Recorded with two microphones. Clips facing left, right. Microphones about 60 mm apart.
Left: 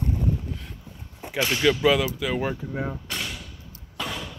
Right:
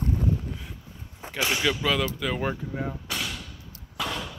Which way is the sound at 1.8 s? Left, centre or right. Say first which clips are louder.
Left 5 dB; centre.